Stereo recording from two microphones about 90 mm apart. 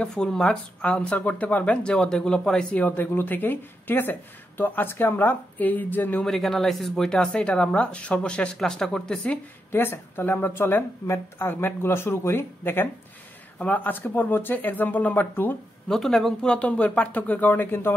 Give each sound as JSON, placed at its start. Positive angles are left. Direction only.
{"t": 0.0, "sound": "speech", "side_deg": 10}
{"t": 2.8, "sound": "a woman's voice", "side_deg": 20}
{"t": 6.2, "sound": "speech", "side_deg": 0}
{"t": 9.7, "sound": "a woman's voice", "side_deg": 25}
{"t": 15.9, "sound": "speech", "side_deg": 5}
{"t": 16.5, "sound": "speech", "side_deg": 15}